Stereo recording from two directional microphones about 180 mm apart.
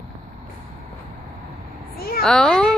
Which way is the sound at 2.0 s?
60° left (ahead or behind).